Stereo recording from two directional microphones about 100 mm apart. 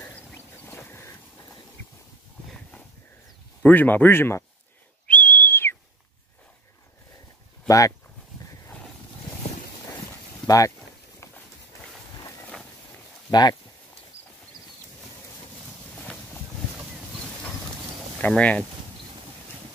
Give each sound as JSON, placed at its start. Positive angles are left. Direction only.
{"t": 0.7, "sound": "a sound", "side_deg": 25}
{"t": 3.6, "sound": "speech", "side_deg": 20}
{"t": 5.0, "sound": "whistle", "side_deg": 15}
{"t": 7.6, "sound": "speech", "side_deg": 35}
{"t": 10.4, "sound": "speech", "side_deg": 35}
{"t": 13.3, "sound": "speech", "side_deg": 45}
{"t": 18.2, "sound": "speech", "side_deg": 15}